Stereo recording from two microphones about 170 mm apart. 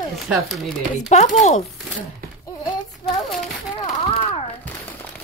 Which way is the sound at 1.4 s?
45° left (ahead or behind).